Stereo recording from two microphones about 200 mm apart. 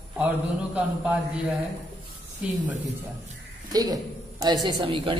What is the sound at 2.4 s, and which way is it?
Speech, 5° right (ahead or behind).